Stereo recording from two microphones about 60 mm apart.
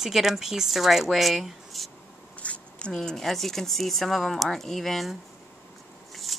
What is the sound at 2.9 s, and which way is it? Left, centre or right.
A woman's voice, centre.